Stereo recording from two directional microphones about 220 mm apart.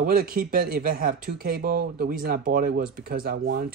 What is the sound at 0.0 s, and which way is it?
Speech, 40° right (ahead or behind).